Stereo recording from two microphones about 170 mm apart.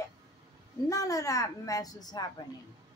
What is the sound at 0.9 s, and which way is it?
A woman's voice, 20° left (ahead or behind).